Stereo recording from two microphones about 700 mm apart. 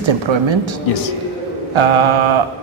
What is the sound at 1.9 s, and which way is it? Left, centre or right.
Speech, right.